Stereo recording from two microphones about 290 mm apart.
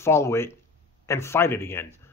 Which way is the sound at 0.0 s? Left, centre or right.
Centre.